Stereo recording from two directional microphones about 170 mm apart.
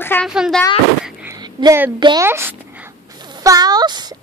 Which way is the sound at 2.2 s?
15° right (ahead or behind).